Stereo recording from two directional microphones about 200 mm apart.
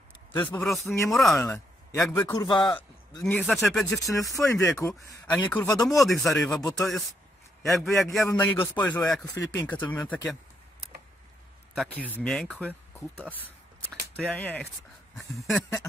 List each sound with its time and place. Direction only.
0.4 s speech: 10° left (ahead or behind)
1.3 s a sound: 15° left (ahead or behind)
2.1 s a man's voice: 20° left (ahead or behind)
3.3 s speech: 10° left (ahead or behind)
4.5 s speech: 15° left (ahead or behind)
11.7 s speech: centre (ahead or behind)